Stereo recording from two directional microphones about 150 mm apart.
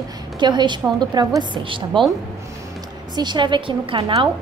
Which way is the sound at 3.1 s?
30° right (ahead or behind).